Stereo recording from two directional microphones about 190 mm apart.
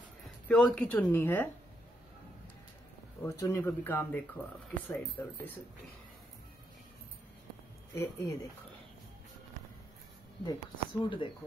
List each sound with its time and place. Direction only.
0.2 s a woman's voice: centre (ahead or behind)
3.2 s speech: 15° left (ahead or behind)
7.9 s speech: 15° left (ahead or behind)
10.4 s speech: 20° left (ahead or behind)